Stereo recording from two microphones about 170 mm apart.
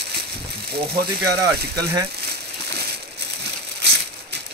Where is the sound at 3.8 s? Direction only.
75° right (ahead or behind).